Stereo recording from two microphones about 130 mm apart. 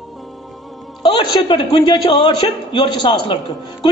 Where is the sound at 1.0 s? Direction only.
45° left (ahead or behind).